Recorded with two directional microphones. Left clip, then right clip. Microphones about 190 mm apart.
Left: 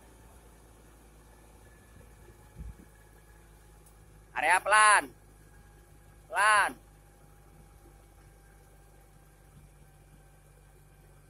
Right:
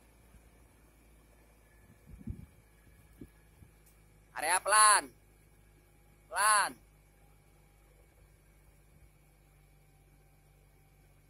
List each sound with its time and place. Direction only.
4.3 s a man's voice: 20° right (ahead or behind)
6.3 s speech: 20° right (ahead or behind)